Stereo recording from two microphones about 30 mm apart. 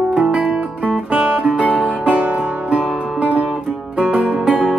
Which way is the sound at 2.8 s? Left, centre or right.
Right.